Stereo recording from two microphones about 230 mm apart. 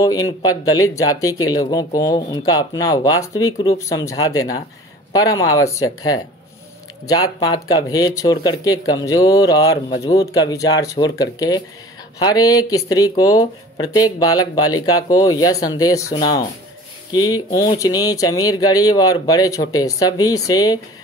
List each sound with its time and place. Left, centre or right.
0.0 s speech: centre
17.6 s speech: centre